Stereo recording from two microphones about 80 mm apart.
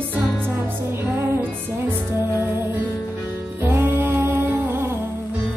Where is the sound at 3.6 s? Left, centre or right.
Right.